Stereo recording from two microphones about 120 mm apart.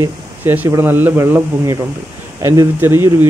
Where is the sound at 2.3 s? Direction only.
25° right (ahead or behind).